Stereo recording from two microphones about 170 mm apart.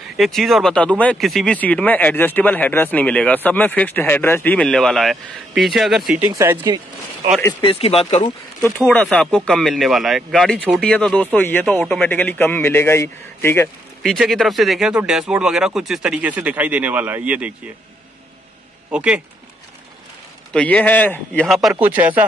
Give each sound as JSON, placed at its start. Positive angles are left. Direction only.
{"t": 0.2, "sound": "speech", "side_deg": 0}
{"t": 6.2, "sound": "speech", "side_deg": -15}
{"t": 7.6, "sound": "speech", "side_deg": 35}
{"t": 8.8, "sound": "speech", "side_deg": 10}
{"t": 14.0, "sound": "speech", "side_deg": 0}
{"t": 18.9, "sound": "speech", "side_deg": -5}
{"t": 20.5, "sound": "speech", "side_deg": 10}
{"t": 21.5, "sound": "speech", "side_deg": 0}